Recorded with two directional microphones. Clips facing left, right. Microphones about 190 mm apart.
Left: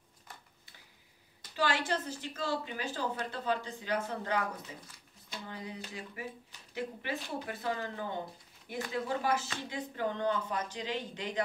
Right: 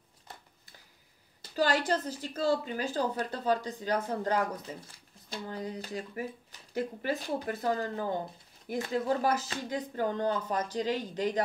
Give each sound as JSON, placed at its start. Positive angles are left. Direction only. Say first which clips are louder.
{"t": 1.4, "sound": "a woman's voice", "louder": "right 4 dB", "side_deg": -40}